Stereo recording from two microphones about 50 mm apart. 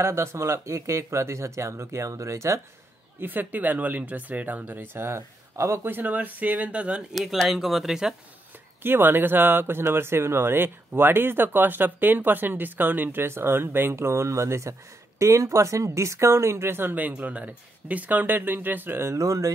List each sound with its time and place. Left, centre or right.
0.0 s speech: right
3.2 s speech: right
4.9 s speech: right
5.9 s speech: right
7.4 s speech: centre
8.8 s speech: right
16.9 s speech: right
19.0 s speech: right